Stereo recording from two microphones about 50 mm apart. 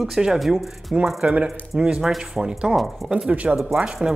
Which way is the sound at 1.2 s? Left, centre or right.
Right.